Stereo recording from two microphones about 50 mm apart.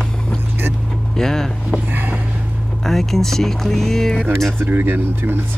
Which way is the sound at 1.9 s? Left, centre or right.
Right.